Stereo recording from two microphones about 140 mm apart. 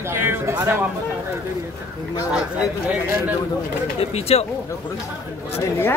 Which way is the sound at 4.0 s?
45° left (ahead or behind).